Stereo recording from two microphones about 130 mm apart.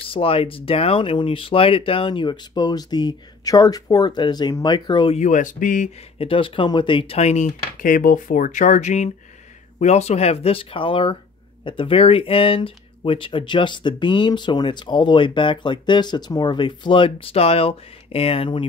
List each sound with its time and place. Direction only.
0.1 s speech: 45° left (ahead or behind)
5.1 s speech: 70° left (ahead or behind); by 5.9 s 90° left
6.1 s speech: 45° left (ahead or behind)